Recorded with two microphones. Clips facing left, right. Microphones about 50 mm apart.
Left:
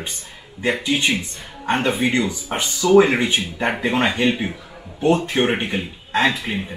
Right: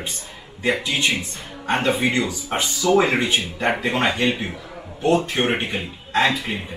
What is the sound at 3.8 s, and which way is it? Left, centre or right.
A man's voice, left.